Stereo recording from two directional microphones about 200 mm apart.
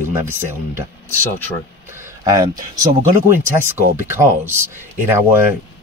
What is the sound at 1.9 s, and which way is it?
Speech, 15° right (ahead or behind).